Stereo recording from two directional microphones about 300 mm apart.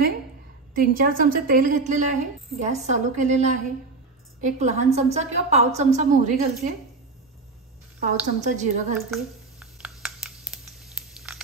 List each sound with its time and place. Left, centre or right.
0.7 s a woman's voice: right
8.4 s a woman's voice: right
9.1 s a sound: centre